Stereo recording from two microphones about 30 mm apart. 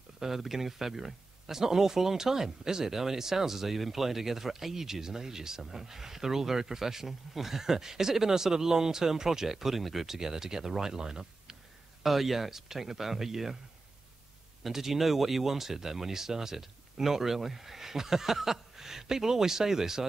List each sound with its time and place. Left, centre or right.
0.2 s speech: centre
12.0 s speech: centre
14.6 s speech: centre